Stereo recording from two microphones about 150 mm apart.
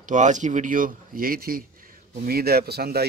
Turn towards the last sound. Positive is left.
turn(degrees=-90)